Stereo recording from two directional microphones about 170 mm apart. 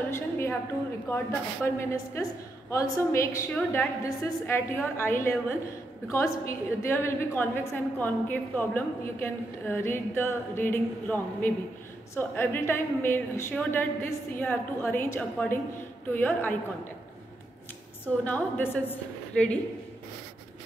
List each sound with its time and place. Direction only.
0.1 s a woman's voice: 15° left (ahead or behind)
18.2 s a woman's voice: 10° left (ahead or behind)